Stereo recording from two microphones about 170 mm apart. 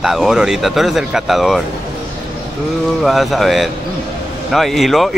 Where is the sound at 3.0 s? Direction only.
Centre (ahead or behind).